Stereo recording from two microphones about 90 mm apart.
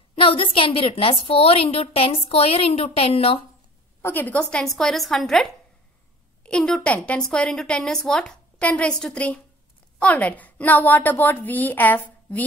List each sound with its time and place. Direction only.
0.1 s a woman's voice: 85° left
4.0 s a woman's voice: 20° left (ahead or behind)